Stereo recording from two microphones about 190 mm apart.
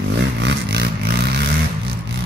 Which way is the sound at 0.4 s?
65° right (ahead or behind).